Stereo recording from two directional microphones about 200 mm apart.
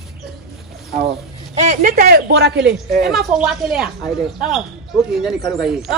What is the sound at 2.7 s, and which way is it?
A man's voice, centre (ahead or behind).